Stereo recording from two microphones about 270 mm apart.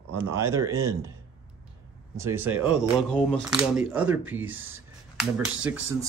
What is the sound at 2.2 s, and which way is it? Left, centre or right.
Speech, centre.